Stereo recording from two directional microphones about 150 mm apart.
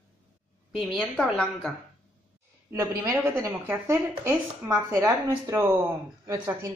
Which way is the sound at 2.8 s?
15° right (ahead or behind).